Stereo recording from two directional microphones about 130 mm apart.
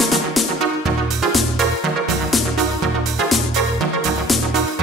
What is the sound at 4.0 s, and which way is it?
Music, centre (ahead or behind).